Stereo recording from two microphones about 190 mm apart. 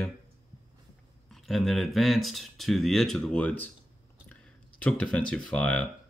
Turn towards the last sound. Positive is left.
turn(degrees=5)  # may be behind; listen again after turning